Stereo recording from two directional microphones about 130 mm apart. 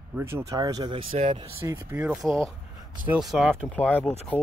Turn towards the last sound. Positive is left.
turn(degrees=10)  # may be behind; listen again after turning